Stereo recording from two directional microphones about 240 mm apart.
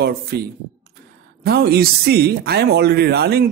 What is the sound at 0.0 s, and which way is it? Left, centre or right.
Speech, right.